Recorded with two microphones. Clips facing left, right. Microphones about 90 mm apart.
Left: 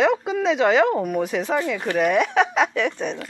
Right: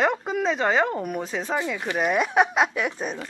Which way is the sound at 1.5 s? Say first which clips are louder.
Left 3 dB; 5° right (ahead or behind).